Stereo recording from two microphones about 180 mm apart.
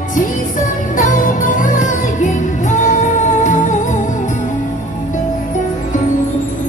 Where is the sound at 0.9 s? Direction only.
50° left (ahead or behind).